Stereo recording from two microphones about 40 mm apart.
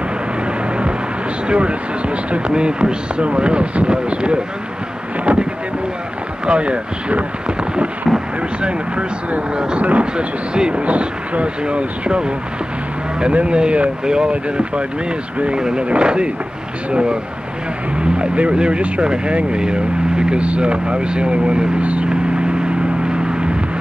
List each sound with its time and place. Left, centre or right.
1.5 s speech: right
22.1 s vehicle: right